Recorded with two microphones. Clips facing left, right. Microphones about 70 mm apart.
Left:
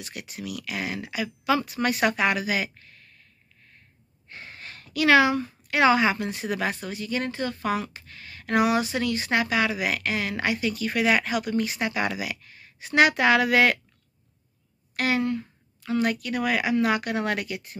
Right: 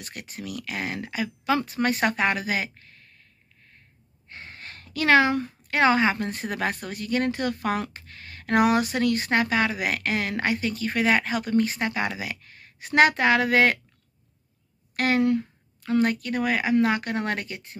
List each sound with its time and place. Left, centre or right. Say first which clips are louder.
0.0 s speech: left 1 dB; right
4.3 s a woman's voice: even; right
12.4 s speech: right 2 dB; right
15.0 s a woman's voice: right 3 dB; right